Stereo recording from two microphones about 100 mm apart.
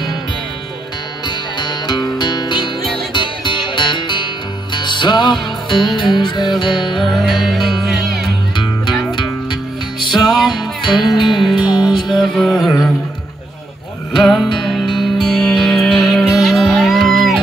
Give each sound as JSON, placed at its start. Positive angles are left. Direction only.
{"t": 1.2, "sound": "music", "side_deg": 45}
{"t": 7.1, "sound": "music", "side_deg": 0}
{"t": 9.1, "sound": "music", "side_deg": 55}
{"t": 12.2, "sound": "music", "side_deg": 5}
{"t": 14.1, "sound": "music", "side_deg": 0}